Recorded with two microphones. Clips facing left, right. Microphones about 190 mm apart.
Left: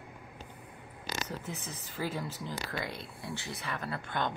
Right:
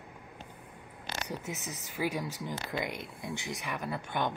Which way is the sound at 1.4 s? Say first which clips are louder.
Right 2 dB; 85° right.